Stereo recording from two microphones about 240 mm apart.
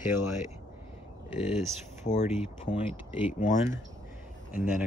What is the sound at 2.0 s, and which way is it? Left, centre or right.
Speech, left.